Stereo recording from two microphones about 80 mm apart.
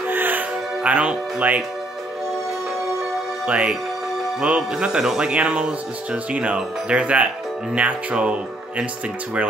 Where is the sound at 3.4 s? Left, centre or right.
Centre.